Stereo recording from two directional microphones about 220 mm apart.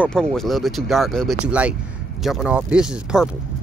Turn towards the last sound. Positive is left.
turn(degrees=-5)  # may be behind; listen again after turning